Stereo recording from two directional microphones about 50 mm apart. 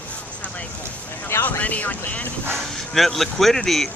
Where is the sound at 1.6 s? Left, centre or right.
Left.